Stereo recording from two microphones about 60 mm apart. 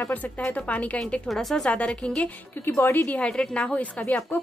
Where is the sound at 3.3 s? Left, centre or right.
Centre.